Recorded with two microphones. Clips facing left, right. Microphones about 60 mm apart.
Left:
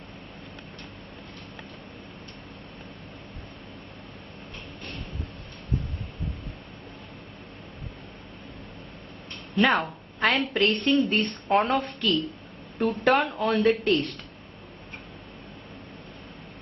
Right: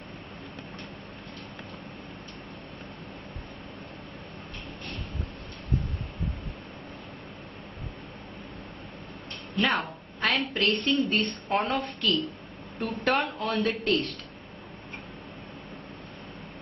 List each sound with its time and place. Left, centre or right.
9.6 s a woman's voice: centre